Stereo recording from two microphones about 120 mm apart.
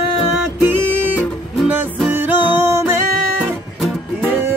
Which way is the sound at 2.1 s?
15° right (ahead or behind).